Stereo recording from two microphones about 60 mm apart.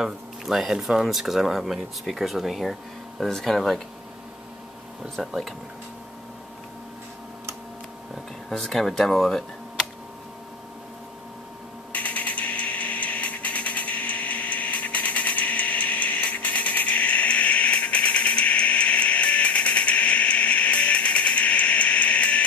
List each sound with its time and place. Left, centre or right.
0.0 s speech: centre
5.0 s speech: centre
8.5 s speech: centre
11.9 s a sound: left